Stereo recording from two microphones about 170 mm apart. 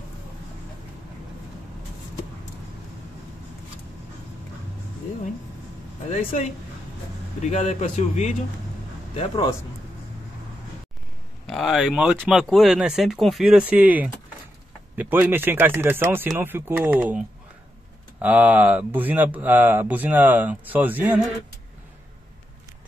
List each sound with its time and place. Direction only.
6.0 s a man's voice: 45° left (ahead or behind)
9.1 s a man's voice: 30° left (ahead or behind)
11.4 s speech: centre (ahead or behind)
18.2 s speech: 10° right (ahead or behind)